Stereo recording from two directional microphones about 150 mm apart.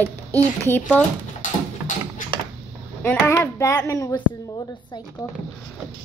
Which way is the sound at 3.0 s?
15° left (ahead or behind).